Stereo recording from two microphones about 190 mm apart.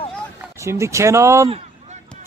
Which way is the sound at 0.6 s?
15° right (ahead or behind).